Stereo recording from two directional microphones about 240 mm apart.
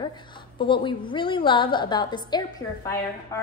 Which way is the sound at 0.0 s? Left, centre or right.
Centre.